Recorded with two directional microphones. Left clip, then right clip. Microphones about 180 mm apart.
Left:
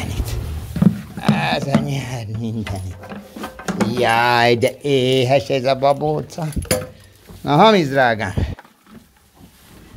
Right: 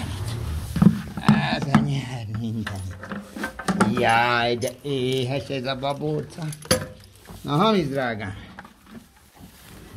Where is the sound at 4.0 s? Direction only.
20° left (ahead or behind).